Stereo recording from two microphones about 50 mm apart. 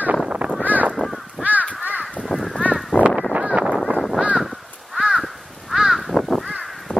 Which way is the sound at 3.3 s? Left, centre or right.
Right.